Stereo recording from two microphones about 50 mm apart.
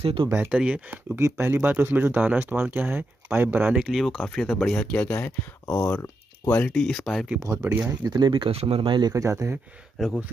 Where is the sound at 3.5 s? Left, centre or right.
Right.